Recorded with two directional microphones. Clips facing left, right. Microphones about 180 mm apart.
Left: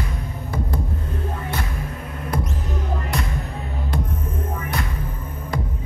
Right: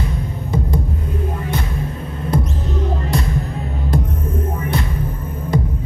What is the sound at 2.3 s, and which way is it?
Basketball bounce, 25° right (ahead or behind).